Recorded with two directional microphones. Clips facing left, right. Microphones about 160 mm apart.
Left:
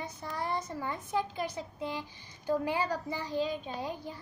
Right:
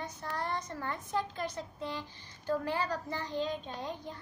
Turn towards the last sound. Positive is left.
turn(degrees=5)  # may be behind; listen again after turning